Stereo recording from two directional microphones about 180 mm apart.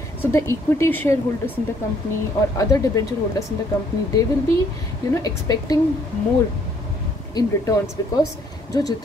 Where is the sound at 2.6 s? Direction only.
20° left (ahead or behind).